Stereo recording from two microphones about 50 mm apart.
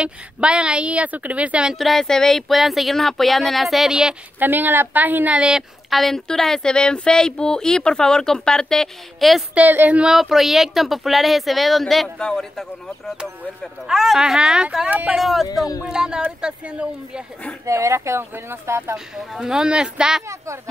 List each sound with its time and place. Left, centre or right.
0.0 s a woman's voice: right
1.8 s speech: centre
4.4 s speech: right
5.9 s speech: centre
9.2 s speech: centre
13.8 s speech: centre
15.9 s a woman's voice: centre
17.6 s speech: right
18.3 s speech: right
19.1 s speech: centre